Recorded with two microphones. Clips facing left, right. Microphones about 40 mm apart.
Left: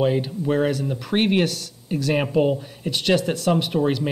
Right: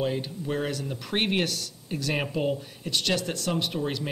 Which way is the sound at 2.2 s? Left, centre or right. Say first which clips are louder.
Left 8 dB; centre.